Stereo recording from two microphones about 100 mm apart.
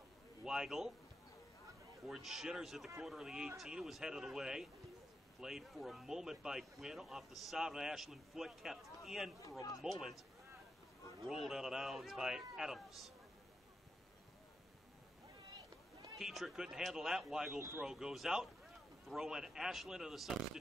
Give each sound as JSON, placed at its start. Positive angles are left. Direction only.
{"t": 0.4, "sound": "speech", "side_deg": -5}
{"t": 2.0, "sound": "speech", "side_deg": -5}
{"t": 11.2, "sound": "speech", "side_deg": -5}
{"t": 16.2, "sound": "speech", "side_deg": -5}
{"t": 17.6, "sound": "speech", "side_deg": -25}
{"t": 17.8, "sound": "speech", "side_deg": -5}